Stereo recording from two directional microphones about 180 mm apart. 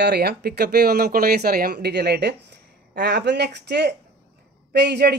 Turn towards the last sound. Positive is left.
turn(degrees=-65)  # may be behind; listen again after turning